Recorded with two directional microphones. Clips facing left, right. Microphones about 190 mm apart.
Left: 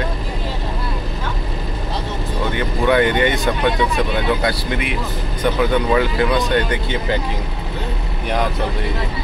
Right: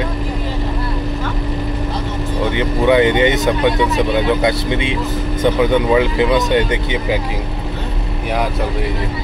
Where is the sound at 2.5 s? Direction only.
20° right (ahead or behind).